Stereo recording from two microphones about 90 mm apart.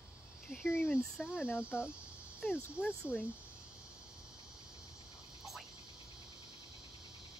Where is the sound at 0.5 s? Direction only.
Centre (ahead or behind).